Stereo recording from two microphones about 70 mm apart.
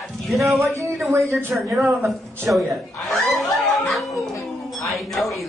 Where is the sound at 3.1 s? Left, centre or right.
Centre.